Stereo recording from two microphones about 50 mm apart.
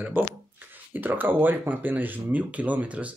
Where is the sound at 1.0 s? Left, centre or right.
Right.